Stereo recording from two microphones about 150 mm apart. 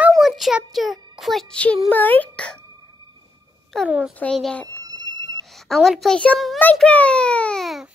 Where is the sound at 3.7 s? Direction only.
5° left (ahead or behind).